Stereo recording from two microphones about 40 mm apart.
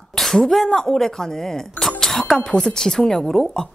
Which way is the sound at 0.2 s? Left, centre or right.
Centre.